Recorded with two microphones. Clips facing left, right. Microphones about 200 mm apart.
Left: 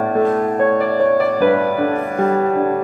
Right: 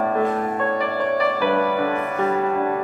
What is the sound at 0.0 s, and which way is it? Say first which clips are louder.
Music: left 5 dB; 40° left (ahead or behind).